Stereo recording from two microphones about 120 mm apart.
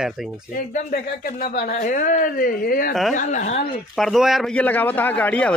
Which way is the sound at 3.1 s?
90° left.